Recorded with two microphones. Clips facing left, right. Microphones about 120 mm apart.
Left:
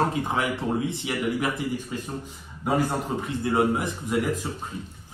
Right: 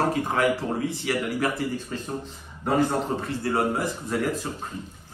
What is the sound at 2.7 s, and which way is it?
A man's voice, 15° left (ahead or behind).